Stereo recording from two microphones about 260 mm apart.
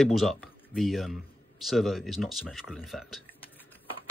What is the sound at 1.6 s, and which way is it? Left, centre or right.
Speech, centre.